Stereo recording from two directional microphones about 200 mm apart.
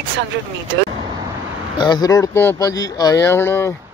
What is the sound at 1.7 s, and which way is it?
Speech, 20° left (ahead or behind).